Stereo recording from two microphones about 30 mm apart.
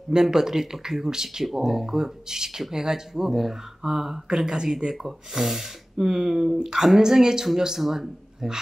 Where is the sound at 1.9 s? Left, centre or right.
Centre.